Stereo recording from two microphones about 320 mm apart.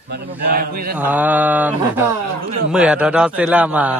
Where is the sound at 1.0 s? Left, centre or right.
Centre.